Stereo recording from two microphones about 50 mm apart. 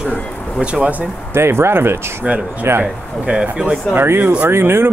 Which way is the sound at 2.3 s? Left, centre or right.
Right.